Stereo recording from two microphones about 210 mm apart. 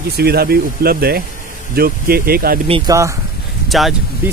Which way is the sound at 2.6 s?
25° right (ahead or behind).